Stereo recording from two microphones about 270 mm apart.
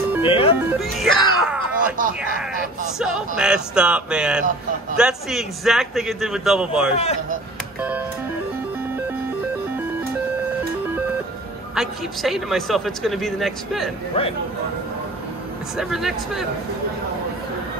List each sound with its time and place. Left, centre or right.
0.2 s music: centre
0.7 s speech: centre
3.0 s a man's voice: centre
11.7 s a man's voice: centre
15.8 s a man's voice: centre